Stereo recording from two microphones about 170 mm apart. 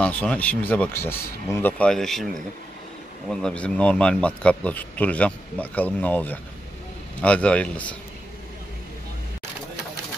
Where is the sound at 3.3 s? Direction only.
5° left (ahead or behind).